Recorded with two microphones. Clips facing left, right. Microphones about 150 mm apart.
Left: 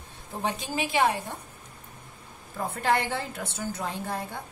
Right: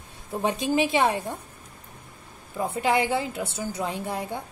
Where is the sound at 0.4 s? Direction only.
20° right (ahead or behind).